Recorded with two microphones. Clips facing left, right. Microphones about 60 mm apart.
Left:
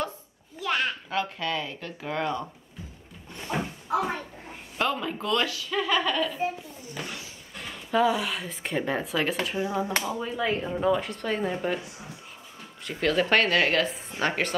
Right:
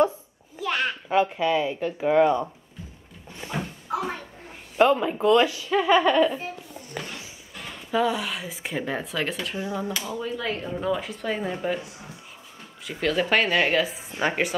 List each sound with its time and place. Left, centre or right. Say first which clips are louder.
0.6 s a sound: right 1 dB; centre
1.0 s speech: right 7 dB; centre
3.5 s cupboard open or close: left 2 dB; centre
4.7 s speech: right 8 dB; centre
7.0 s a sound: right 2 dB; right
7.6 s speech: left 1 dB; centre
12.8 s speech: even; centre